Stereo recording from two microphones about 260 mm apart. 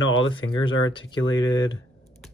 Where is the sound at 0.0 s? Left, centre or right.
Left.